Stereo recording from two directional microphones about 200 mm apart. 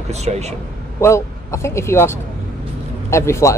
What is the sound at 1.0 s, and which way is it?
Speech, 15° left (ahead or behind).